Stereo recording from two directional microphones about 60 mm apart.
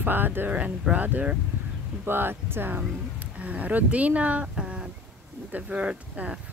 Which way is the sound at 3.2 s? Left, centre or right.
Right.